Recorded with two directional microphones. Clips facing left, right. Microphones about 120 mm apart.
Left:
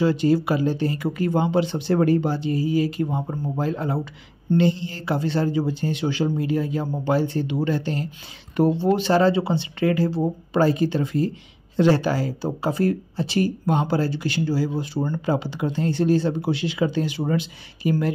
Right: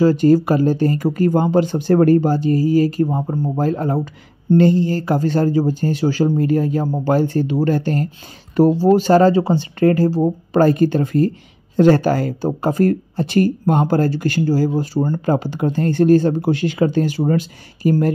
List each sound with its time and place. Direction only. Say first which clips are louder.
0.0 s speech: right 6 dB; 45° right (ahead or behind)